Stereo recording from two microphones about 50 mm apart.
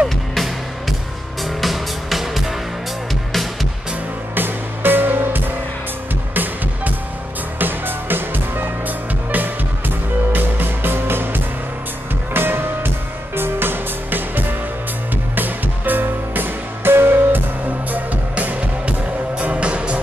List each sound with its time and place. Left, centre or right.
0.3 s music: centre
4.4 s music: right
17.9 s music: right